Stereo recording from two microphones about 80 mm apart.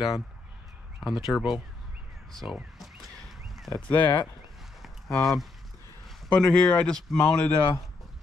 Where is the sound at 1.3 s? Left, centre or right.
Left.